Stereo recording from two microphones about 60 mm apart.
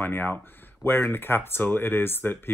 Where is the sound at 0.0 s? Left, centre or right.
Left.